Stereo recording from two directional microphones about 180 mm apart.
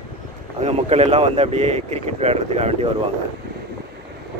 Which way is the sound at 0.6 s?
35° right (ahead or behind).